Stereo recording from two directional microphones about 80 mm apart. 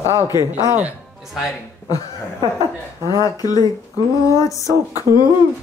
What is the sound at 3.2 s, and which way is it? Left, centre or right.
Female singing, left.